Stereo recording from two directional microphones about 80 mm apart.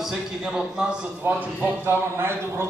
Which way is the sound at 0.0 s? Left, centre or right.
Centre.